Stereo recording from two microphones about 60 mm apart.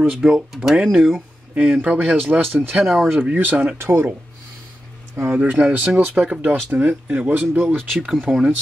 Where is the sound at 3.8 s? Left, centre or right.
Right.